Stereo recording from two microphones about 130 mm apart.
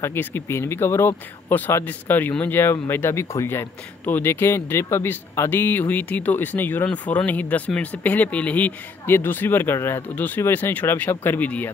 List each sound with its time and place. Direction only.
0.0 s speech: 15° left (ahead or behind)